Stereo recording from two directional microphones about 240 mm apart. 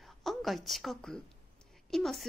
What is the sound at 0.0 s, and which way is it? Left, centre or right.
A woman's voice, centre.